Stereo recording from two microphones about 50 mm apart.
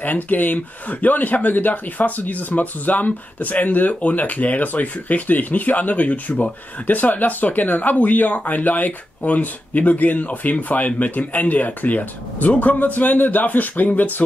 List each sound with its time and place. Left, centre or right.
0.0 s speech: left